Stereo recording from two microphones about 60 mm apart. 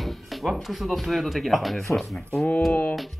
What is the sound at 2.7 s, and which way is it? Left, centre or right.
Music, left.